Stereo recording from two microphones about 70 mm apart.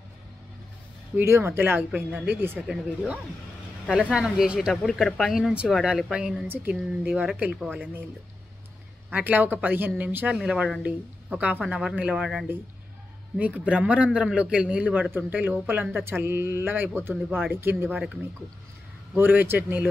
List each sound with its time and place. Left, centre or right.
1.1 s speech: right
2.0 s speech: right
3.9 s speech: centre
6.4 s speech: right
6.7 s speech: centre
9.1 s speech: right
10.3 s speech: centre
10.8 s speech: centre
12.2 s speech: centre
13.4 s speech: centre
15.0 s speech: right
19.1 s speech: right